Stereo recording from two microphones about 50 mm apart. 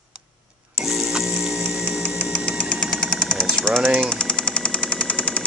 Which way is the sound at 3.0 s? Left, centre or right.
Centre.